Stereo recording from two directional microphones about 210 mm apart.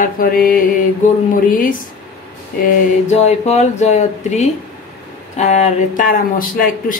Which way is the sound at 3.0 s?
30° left (ahead or behind).